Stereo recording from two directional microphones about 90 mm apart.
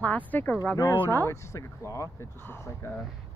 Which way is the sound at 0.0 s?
15° left (ahead or behind).